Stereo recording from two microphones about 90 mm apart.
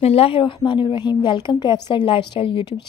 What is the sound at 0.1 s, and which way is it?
Speech, 85° left.